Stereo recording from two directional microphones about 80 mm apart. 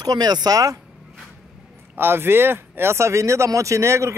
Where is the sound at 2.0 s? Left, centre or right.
Right.